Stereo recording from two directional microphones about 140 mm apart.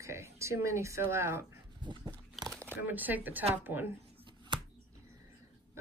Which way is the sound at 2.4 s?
10° left (ahead or behind).